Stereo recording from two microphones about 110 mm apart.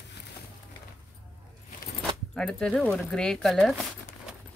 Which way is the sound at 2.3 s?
5° left (ahead or behind).